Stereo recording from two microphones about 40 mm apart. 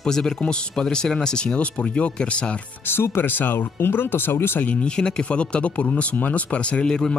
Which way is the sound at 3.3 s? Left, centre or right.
Left.